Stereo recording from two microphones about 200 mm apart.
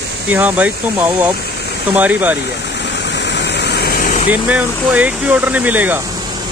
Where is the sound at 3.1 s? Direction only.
60° left (ahead or behind); by 4.2 s 45° left (ahead or behind).